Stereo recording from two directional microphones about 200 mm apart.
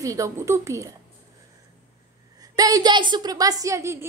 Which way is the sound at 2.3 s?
20° right (ahead or behind).